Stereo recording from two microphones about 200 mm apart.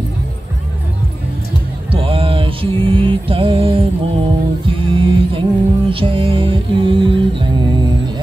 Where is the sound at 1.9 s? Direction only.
25° right (ahead or behind).